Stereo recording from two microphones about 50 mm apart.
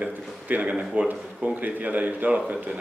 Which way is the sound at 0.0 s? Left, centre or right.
Right.